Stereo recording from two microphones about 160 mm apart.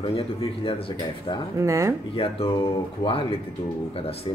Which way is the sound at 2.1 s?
35° left (ahead or behind).